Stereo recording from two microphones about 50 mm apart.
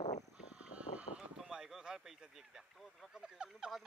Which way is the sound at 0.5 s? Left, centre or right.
Right.